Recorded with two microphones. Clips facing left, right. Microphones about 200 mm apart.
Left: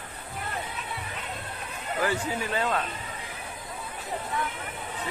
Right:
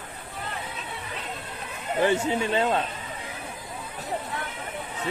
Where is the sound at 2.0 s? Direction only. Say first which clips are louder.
Right 6 dB; 25° right (ahead or behind).